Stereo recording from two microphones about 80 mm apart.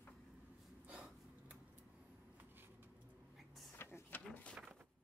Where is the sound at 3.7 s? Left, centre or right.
Left.